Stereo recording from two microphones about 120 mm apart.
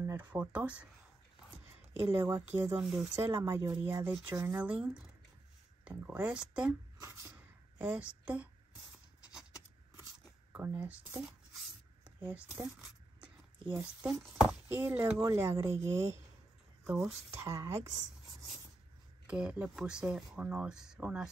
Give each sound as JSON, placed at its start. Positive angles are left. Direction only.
{"t": 0.0, "sound": "speech", "side_deg": -20}
{"t": 2.0, "sound": "speech", "side_deg": -20}
{"t": 2.8, "sound": "speech", "side_deg": -5}
{"t": 3.3, "sound": "speech", "side_deg": -20}
{"t": 7.8, "sound": "speech", "side_deg": -10}
{"t": 10.5, "sound": "speech", "side_deg": -15}
{"t": 12.3, "sound": "speech", "side_deg": -10}
{"t": 13.7, "sound": "speech", "side_deg": -15}
{"t": 16.8, "sound": "speech", "side_deg": -5}
{"t": 17.3, "sound": "speech", "side_deg": -25}
{"t": 19.2, "sound": "speech", "side_deg": -10}